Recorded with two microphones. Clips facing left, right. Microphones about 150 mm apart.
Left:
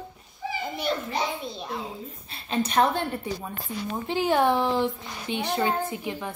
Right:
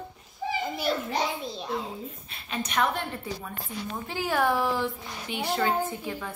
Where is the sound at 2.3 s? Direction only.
30° left (ahead or behind).